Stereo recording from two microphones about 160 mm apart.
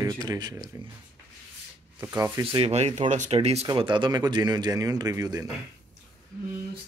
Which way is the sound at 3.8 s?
30° right (ahead or behind).